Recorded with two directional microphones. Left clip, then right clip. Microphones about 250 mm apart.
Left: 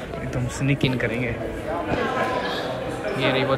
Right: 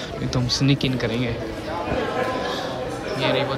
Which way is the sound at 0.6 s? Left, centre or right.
Centre.